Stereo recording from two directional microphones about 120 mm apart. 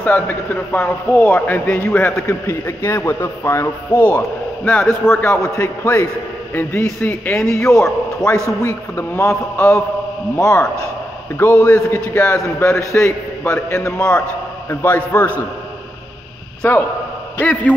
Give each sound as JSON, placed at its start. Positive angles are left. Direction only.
{"t": 0.0, "sound": "a man's voice", "side_deg": 15}
{"t": 13.9, "sound": "a man's voice", "side_deg": 10}
{"t": 14.7, "sound": "a man's voice", "side_deg": 20}
{"t": 16.6, "sound": "a man's voice", "side_deg": 20}